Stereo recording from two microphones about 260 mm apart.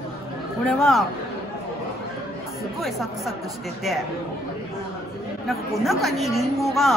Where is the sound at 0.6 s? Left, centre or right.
Centre.